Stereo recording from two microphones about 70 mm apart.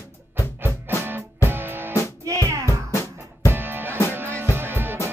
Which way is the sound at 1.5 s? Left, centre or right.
Right.